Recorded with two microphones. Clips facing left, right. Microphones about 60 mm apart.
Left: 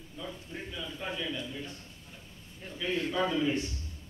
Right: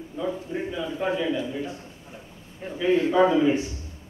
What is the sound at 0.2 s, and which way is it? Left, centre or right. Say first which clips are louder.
A man's voice: right 12 dB; right.